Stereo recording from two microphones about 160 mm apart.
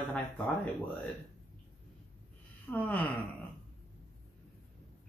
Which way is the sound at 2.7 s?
10° left (ahead or behind).